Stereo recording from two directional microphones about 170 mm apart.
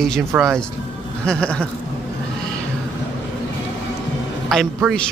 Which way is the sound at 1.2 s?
5° left (ahead or behind).